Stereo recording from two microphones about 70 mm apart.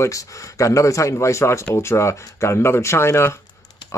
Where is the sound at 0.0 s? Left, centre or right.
Left.